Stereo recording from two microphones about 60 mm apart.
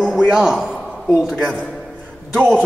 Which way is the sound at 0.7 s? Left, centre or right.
Centre.